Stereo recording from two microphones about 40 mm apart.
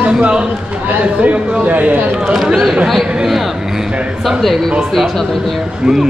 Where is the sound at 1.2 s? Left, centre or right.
Right.